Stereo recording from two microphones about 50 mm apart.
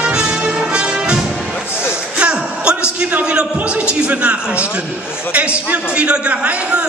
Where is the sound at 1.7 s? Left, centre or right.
Left.